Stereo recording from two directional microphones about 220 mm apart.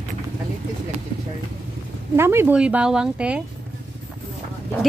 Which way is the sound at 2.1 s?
10° right (ahead or behind).